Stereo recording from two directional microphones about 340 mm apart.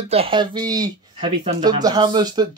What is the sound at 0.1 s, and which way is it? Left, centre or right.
Speech, centre.